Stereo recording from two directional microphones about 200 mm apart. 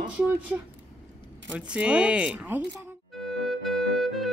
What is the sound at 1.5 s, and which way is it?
Speech, 5° right (ahead or behind).